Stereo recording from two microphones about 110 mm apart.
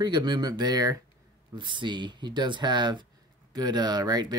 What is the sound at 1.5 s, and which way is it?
Speech, 45° right (ahead or behind).